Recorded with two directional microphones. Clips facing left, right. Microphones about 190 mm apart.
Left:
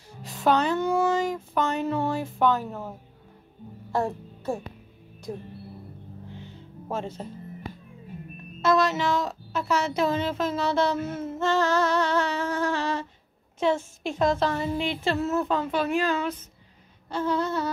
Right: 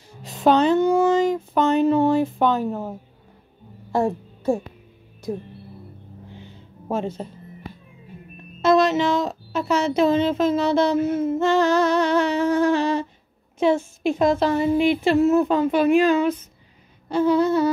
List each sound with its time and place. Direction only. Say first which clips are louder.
0.2 s speech: right 6 dB; 20° right (ahead or behind)
3.9 s speech: right 5 dB; 10° right (ahead or behind)
6.9 s speech: right 6 dB; 15° right (ahead or behind)
8.6 s speech: right 5 dB; 20° right (ahead or behind)